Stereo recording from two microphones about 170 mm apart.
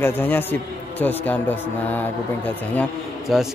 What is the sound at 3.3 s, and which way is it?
Speech, centre (ahead or behind).